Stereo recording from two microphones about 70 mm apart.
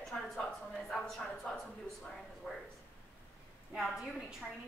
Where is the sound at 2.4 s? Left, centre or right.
Left.